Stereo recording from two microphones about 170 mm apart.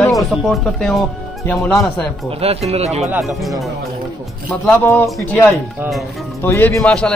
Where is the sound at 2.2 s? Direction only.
35° right (ahead or behind).